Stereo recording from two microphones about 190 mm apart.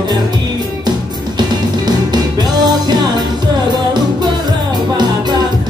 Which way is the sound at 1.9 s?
20° right (ahead or behind).